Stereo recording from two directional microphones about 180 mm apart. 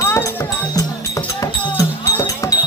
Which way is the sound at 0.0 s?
15° left (ahead or behind).